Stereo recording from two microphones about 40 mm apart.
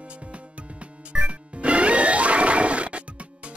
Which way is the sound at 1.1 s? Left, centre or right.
Right.